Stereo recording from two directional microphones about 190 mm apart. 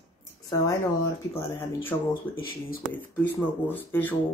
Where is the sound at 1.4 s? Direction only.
10° left (ahead or behind).